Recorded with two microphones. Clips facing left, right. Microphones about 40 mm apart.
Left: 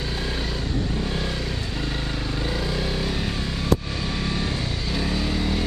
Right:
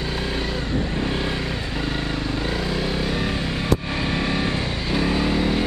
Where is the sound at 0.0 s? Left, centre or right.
Centre.